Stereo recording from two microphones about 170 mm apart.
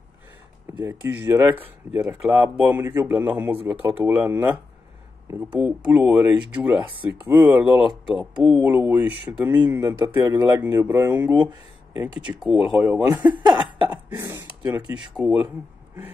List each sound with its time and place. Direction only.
0.7 s speech: 15° right (ahead or behind)
7.6 s speech: 30° left (ahead or behind)
8.1 s speech: centre (ahead or behind)
8.6 s speech: 10° right (ahead or behind)
12.4 s speech: 5° right (ahead or behind)